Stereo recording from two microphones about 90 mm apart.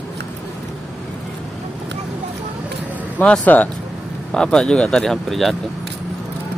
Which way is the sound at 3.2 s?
20° left (ahead or behind).